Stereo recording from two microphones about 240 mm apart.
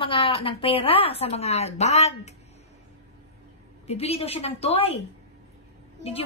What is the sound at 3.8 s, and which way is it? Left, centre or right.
A woman's voice, left.